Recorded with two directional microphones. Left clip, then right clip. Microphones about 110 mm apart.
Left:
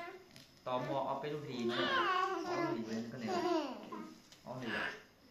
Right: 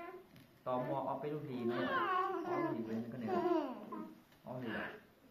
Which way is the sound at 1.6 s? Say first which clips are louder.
Left 3 dB; 20° left (ahead or behind).